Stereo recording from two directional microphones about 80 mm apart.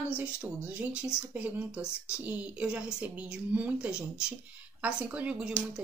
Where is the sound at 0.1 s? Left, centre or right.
Centre.